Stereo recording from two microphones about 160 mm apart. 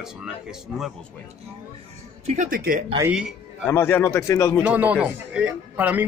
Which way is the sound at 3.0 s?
5° right (ahead or behind).